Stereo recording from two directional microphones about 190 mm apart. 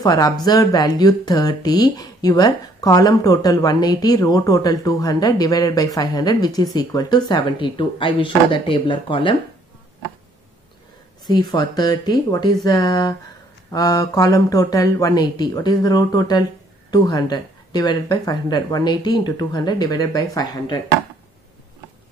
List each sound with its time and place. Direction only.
0.0 s speech: 20° left (ahead or behind)
11.2 s speech: 20° left (ahead or behind)